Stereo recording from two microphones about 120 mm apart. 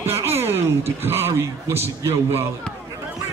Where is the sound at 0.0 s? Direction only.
20° right (ahead or behind).